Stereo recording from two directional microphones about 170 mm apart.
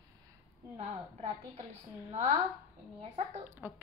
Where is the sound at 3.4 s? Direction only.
10° right (ahead or behind).